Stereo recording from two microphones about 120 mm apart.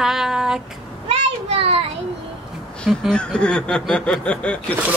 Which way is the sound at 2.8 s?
5° left (ahead or behind).